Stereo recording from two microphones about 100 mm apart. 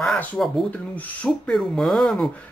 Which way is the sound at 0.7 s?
15° left (ahead or behind).